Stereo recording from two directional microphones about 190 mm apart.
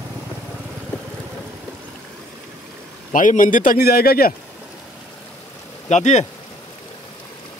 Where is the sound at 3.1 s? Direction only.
45° left (ahead or behind).